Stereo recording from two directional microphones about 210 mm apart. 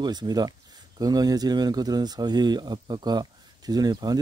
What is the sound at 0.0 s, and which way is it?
Speech, 20° right (ahead or behind).